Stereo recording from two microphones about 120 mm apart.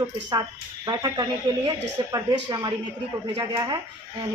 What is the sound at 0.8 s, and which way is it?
Speech, 35° right (ahead or behind).